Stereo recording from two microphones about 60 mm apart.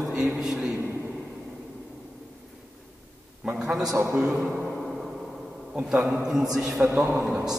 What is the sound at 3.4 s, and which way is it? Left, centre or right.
A man's voice, centre.